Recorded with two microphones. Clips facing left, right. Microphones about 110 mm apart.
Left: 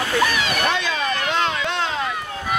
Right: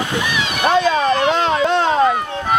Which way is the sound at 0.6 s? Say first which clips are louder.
Right 8 dB; 40° right (ahead or behind).